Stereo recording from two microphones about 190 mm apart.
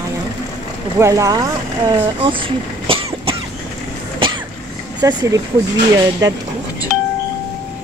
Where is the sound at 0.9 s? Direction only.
15° right (ahead or behind).